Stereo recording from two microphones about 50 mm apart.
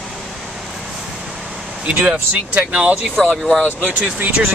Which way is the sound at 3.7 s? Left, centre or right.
Right.